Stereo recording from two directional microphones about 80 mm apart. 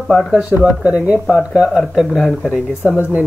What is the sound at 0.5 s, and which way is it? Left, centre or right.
Speech, centre.